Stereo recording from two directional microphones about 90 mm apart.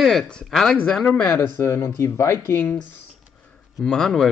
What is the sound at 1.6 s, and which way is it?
Speech, 30° left (ahead or behind).